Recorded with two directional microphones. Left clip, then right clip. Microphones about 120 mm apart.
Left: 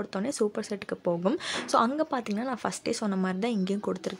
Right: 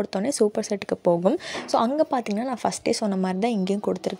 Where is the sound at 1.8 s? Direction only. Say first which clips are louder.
Right 5 dB; 25° right (ahead or behind).